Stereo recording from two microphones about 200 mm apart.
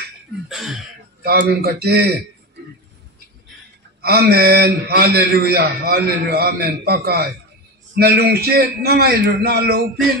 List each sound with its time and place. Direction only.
0.5 s a sound: centre (ahead or behind)
1.2 s a man's voice: 50° right (ahead or behind)
4.0 s a man's voice: 50° right (ahead or behind)